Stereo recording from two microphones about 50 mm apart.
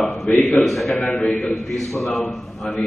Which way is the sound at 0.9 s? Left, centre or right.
Left.